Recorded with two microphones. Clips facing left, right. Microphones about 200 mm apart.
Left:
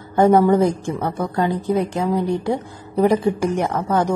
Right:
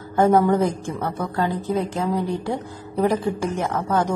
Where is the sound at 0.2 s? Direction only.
15° left (ahead or behind).